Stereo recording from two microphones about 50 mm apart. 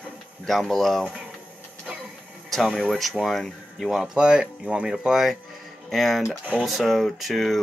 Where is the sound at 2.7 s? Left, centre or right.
Centre.